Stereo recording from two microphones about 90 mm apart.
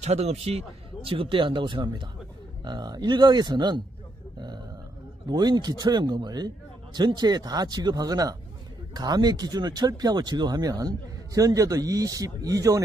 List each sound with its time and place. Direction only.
1.0 s speech: 90° right; by 3.8 s 55° right (ahead or behind)
5.3 s speech: 55° right (ahead or behind)